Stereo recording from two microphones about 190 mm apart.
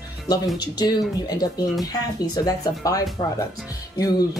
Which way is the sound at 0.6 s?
20° left (ahead or behind).